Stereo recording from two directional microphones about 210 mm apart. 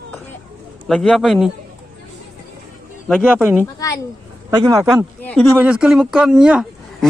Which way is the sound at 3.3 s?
10° right (ahead or behind).